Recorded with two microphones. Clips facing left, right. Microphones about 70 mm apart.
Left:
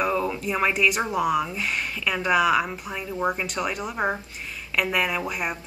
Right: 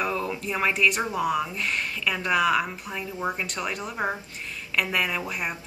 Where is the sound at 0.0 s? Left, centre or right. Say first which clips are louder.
Left 3 dB; centre.